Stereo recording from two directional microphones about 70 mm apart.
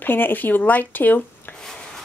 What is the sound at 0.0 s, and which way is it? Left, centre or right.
Speech, left.